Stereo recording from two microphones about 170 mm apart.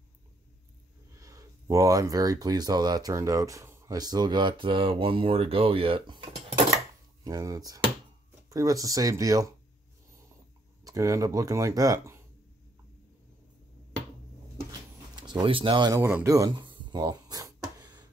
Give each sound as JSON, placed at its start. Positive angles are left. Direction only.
{"t": 1.2, "sound": "speech", "side_deg": -20}
{"t": 7.2, "sound": "speech", "side_deg": -20}
{"t": 10.8, "sound": "speech", "side_deg": -20}
{"t": 14.7, "sound": "a sound", "side_deg": -25}